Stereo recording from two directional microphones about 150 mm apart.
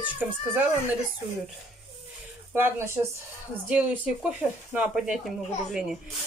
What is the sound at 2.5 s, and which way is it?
Speech, 15° right (ahead or behind).